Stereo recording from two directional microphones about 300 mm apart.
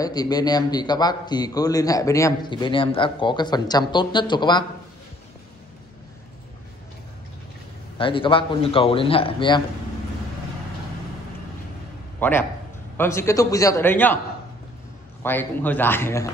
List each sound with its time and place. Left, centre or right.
0.0 s a man's voice: centre
8.0 s a man's voice: centre
12.2 s a man's voice: centre
15.2 s a man's voice: centre